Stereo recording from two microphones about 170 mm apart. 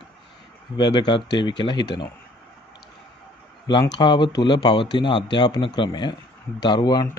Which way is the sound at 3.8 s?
25° left (ahead or behind).